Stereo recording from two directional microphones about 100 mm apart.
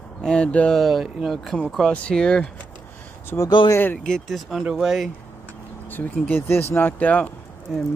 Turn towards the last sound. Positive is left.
turn(degrees=0)  # may be behind; listen again after turning